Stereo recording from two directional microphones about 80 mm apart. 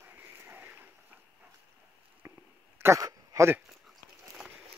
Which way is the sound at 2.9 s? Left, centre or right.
Right.